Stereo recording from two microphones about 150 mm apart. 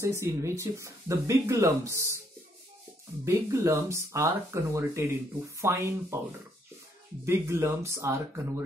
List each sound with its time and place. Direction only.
0.0 s speech: 20° right (ahead or behind)
3.3 s speech: 20° right (ahead or behind)
7.2 s speech: 15° right (ahead or behind)